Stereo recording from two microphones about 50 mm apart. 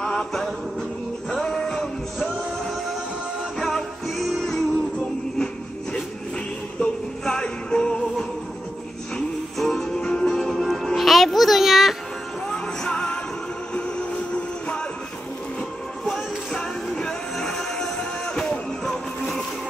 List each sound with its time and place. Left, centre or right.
0.0 s music: centre
1.3 s music: centre
6.8 s music: centre
9.6 s music: centre
12.4 s music: centre
16.5 s music: centre